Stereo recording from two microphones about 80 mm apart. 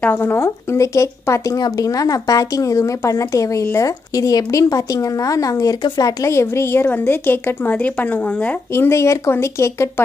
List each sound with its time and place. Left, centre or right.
0.0 s a woman's voice: left
1.6 s a woman's voice: left; by 8.5 s centre
8.7 s a woman's voice: left